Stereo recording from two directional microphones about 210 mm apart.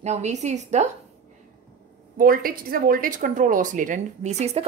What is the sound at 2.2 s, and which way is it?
A woman's voice, 45° right (ahead or behind).